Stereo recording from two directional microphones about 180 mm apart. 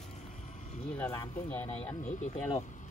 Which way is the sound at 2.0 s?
40° left (ahead or behind).